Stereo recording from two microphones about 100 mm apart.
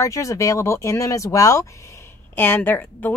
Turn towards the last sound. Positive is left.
turn(degrees=20)  # may be behind; listen again after turning